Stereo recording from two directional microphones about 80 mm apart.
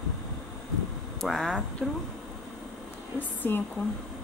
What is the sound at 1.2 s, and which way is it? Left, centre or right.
Speech, centre.